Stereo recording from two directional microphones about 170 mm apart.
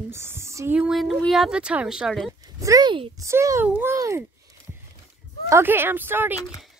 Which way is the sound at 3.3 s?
15° right (ahead or behind).